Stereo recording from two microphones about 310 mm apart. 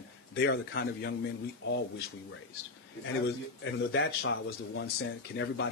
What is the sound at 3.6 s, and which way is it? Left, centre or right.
A man's voice, left.